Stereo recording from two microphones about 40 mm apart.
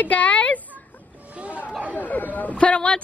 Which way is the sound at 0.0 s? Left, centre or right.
Left.